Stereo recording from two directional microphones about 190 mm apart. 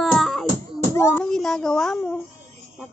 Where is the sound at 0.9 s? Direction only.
15° left (ahead or behind).